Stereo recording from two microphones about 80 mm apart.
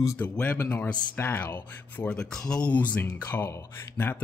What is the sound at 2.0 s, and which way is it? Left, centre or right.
Speech, centre.